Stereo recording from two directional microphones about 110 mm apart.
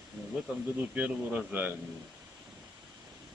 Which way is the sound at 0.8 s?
15° right (ahead or behind).